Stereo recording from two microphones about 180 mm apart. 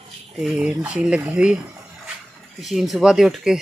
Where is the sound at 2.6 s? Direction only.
Centre (ahead or behind).